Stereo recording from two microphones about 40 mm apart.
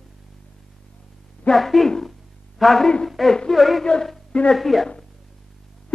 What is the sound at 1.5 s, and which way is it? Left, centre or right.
A man's voice, centre.